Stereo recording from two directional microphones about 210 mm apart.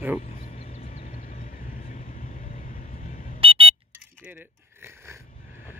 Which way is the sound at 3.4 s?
25° right (ahead or behind).